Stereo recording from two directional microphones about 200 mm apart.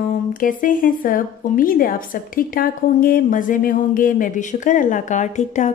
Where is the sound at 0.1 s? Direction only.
45° left (ahead or behind).